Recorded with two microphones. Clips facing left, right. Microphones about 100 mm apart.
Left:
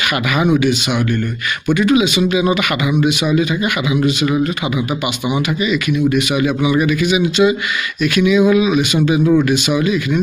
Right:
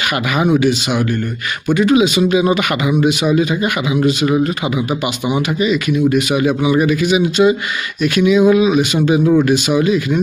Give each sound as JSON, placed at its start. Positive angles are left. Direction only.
{"t": 0.4, "sound": "speech", "side_deg": -35}